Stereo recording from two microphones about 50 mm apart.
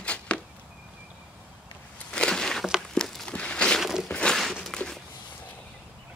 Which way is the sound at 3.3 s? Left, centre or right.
Left.